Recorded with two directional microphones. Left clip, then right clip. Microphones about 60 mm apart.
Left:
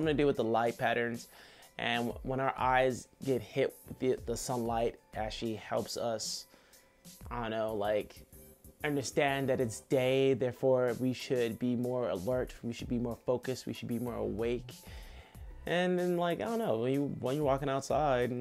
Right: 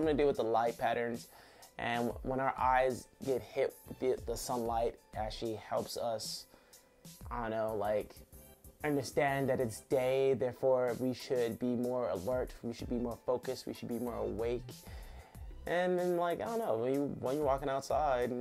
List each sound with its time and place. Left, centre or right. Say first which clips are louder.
0.0 s speech: left 1 dB; left